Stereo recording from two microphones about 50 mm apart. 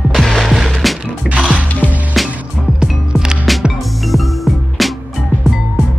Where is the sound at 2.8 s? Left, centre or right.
Centre.